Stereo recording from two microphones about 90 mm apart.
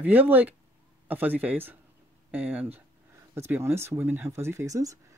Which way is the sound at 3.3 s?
30° right (ahead or behind).